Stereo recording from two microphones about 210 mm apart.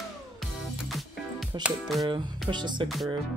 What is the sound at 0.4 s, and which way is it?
Music, centre (ahead or behind).